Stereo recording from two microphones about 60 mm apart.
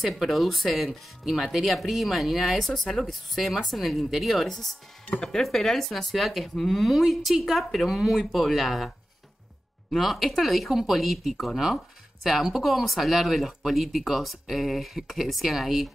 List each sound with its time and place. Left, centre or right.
0.0 s speech: centre
9.9 s speech: centre